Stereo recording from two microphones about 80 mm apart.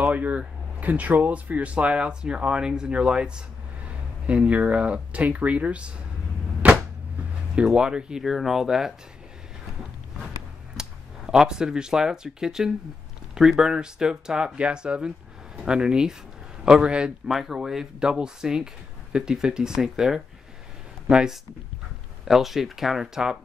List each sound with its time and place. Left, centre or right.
0.0 s speech: centre
6.6 s arrow: centre
7.5 s speech: centre
10.8 s speech: centre